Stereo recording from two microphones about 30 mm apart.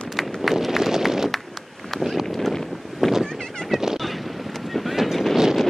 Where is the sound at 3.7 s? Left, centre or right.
Centre.